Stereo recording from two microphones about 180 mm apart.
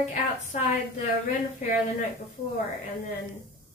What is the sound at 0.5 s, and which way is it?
Speech, 45° left (ahead or behind).